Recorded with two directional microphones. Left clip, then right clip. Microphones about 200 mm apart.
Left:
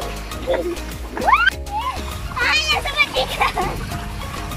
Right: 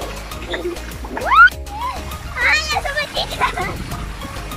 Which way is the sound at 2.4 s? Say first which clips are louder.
Right 1 dB; 10° left (ahead or behind).